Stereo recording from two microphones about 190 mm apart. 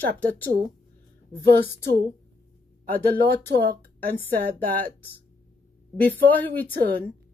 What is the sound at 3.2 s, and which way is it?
Speech, 55° right (ahead or behind).